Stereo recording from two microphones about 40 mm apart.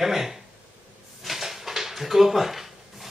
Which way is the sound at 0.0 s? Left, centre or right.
Centre.